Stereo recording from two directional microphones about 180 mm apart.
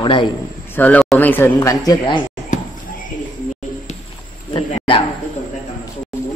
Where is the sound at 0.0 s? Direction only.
25° left (ahead or behind).